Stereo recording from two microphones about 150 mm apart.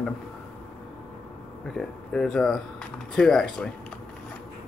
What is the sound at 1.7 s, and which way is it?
Speech, 5° left (ahead or behind).